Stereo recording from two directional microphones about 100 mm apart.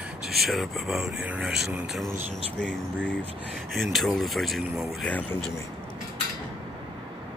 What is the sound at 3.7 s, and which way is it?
A man's voice, centre (ahead or behind).